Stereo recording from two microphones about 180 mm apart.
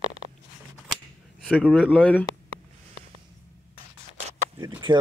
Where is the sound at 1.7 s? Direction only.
10° left (ahead or behind).